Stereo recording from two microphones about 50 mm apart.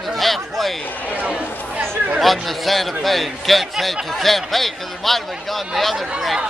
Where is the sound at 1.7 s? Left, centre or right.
Right.